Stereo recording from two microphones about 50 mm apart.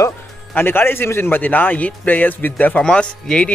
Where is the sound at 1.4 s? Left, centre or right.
Left.